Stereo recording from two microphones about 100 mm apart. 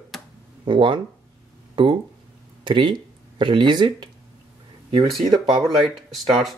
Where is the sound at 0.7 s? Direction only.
55° right (ahead or behind).